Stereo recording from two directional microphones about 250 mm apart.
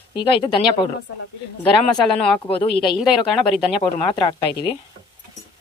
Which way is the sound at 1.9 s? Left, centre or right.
Centre.